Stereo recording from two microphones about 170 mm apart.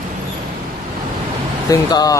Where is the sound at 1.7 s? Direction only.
20° left (ahead or behind).